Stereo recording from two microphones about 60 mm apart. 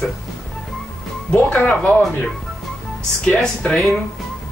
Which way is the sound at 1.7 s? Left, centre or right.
Left.